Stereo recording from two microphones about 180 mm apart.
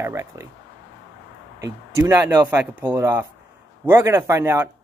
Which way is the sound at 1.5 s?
20° right (ahead or behind).